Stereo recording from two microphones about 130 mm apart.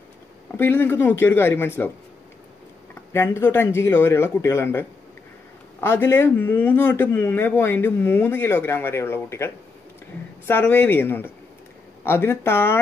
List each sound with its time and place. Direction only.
0.6 s speech: 15° left (ahead or behind)
2.9 s speech: 20° left (ahead or behind)